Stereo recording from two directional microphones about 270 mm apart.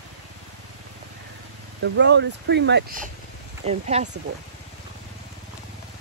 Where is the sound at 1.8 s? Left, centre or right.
Right.